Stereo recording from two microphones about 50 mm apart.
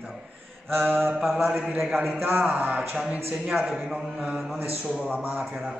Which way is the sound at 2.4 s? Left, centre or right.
Right.